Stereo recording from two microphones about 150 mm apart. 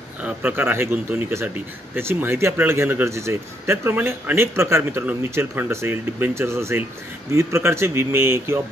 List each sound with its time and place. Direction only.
0.2 s a man's voice: 10° right (ahead or behind)